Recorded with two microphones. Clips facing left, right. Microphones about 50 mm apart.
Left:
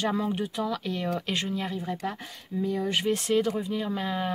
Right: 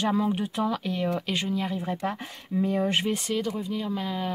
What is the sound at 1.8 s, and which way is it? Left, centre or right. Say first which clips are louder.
Speech: right 2 dB; right.